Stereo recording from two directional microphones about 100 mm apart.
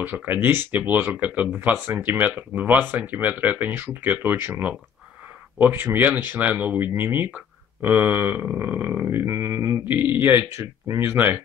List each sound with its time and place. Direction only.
0.0 s speech: 20° right (ahead or behind)